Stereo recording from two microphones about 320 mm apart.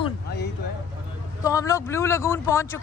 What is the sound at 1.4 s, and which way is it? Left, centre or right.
Speech, centre.